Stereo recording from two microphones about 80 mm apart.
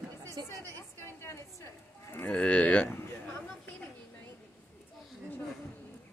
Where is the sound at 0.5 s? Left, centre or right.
Left.